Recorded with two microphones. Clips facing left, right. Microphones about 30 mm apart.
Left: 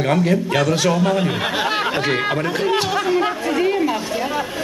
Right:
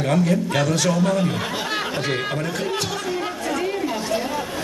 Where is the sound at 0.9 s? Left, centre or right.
Left.